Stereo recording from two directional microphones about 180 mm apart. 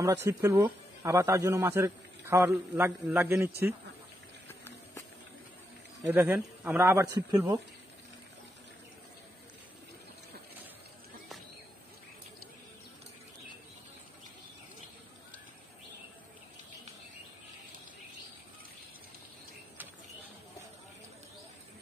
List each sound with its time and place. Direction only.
0.0 s a man's voice: 15° right (ahead or behind)
4.5 s run: 10° left (ahead or behind)
6.0 s a man's voice: 10° right (ahead or behind)